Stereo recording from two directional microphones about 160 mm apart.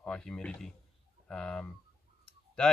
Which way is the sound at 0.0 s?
5° left (ahead or behind).